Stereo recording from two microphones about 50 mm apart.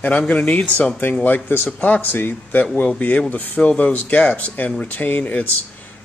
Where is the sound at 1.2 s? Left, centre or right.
Left.